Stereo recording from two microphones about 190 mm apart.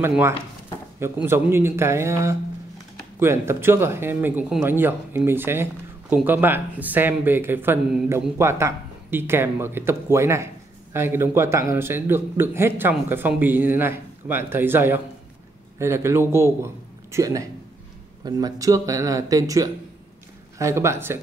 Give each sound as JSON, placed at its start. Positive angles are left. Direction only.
{"t": 0.0, "sound": "a man's voice", "side_deg": -10}